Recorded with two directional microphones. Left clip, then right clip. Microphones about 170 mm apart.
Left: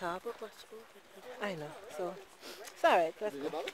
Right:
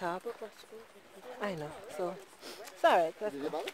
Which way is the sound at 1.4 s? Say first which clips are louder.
Right 2 dB; 25° right (ahead or behind).